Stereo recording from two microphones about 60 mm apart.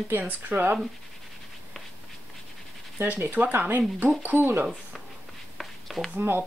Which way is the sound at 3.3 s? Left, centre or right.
Right.